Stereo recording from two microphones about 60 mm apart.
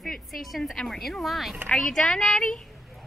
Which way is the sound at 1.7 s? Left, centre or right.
Centre.